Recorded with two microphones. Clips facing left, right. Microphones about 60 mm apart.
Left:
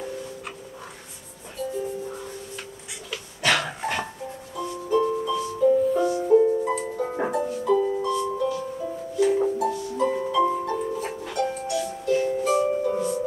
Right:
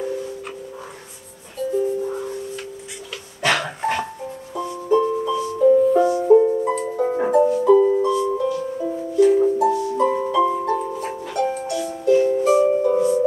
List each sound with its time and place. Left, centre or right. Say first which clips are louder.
1.8 s music: right 8 dB; centre
3.4 s dog: right 3 dB; centre
4.8 s music: right 4 dB; centre
7.8 s music: right 8 dB; centre
8.1 s music: right 5 dB; centre